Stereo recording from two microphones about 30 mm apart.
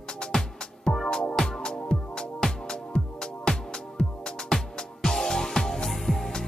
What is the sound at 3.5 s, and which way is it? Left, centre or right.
Music, left.